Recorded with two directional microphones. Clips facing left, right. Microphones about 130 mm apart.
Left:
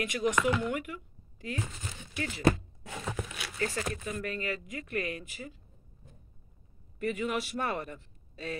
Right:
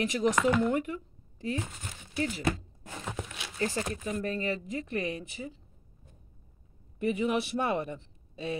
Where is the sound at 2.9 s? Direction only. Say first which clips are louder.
Left 1 dB; 20° right (ahead or behind).